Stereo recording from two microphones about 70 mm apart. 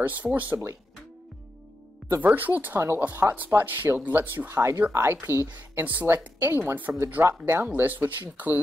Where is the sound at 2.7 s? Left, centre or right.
Right.